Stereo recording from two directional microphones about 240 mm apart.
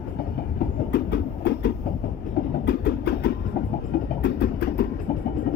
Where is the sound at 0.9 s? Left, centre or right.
Left.